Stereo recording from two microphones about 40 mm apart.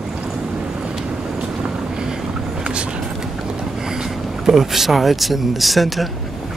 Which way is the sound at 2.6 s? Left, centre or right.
Right.